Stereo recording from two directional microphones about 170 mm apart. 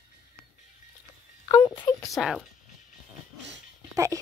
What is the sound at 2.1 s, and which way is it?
Speech, centre (ahead or behind).